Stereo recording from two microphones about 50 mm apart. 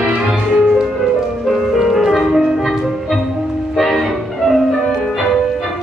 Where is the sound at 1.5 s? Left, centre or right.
Centre.